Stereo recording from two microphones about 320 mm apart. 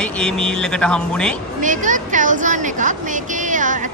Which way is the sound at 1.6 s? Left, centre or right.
Right.